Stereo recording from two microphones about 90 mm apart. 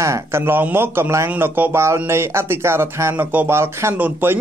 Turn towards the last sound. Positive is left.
turn(degrees=-20)  # may be behind; listen again after turning